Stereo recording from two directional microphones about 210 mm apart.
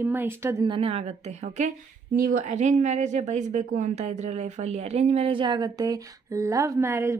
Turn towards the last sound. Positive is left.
turn(degrees=-15)  # may be behind; listen again after turning